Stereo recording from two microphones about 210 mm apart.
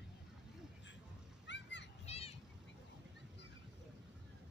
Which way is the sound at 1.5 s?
55° left (ahead or behind).